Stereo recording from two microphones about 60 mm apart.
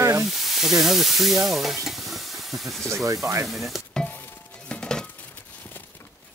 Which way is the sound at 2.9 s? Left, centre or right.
Right.